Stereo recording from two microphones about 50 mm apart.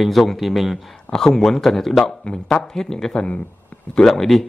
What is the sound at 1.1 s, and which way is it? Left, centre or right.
Speech, centre.